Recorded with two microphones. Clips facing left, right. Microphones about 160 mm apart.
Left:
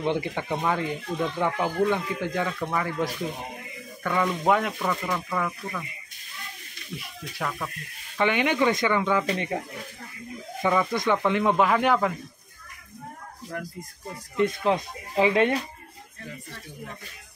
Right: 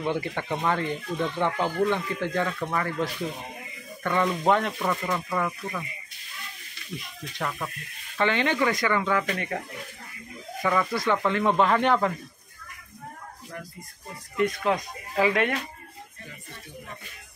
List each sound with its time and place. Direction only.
0.0 s speech: 15° left (ahead or behind); by 5.9 s 5° right (ahead or behind)
7.3 s speech: 5° right (ahead or behind)
8.2 s speech: 15° left (ahead or behind)
10.7 s speech: 15° left (ahead or behind)
14.3 s speech: 25° left (ahead or behind)